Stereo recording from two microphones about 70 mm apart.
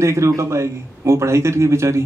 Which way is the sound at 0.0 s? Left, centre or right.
Right.